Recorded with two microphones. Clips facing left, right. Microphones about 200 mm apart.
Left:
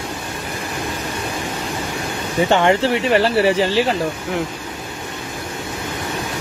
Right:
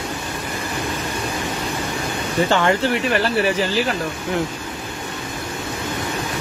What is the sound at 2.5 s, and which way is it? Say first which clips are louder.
Speech: left 4 dB; 20° left (ahead or behind).